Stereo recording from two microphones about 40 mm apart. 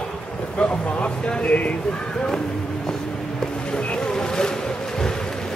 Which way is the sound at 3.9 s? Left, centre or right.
Centre.